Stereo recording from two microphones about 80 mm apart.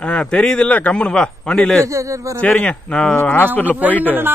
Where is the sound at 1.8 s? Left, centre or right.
Right.